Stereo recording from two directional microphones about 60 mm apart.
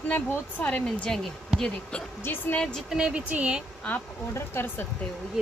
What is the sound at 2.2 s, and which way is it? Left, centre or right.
Speech, left.